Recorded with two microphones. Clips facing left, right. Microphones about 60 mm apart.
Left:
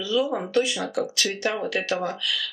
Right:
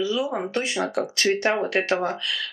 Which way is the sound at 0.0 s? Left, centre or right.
Right.